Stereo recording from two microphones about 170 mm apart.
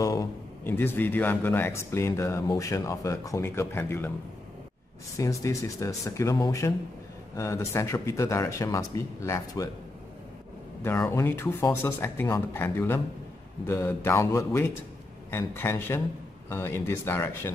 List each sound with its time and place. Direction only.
0.0 s speech: 20° left (ahead or behind)
5.1 s speech: 20° left (ahead or behind)
10.8 s speech: 15° left (ahead or behind)